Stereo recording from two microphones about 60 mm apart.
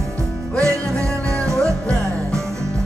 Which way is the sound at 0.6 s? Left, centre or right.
Right.